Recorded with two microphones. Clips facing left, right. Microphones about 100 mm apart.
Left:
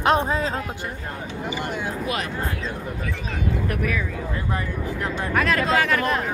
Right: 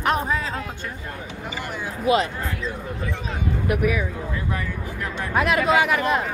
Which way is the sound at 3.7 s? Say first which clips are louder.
Right 4 dB; 15° right (ahead or behind).